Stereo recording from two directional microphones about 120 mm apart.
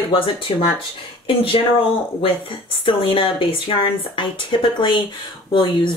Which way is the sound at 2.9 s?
50° left (ahead or behind).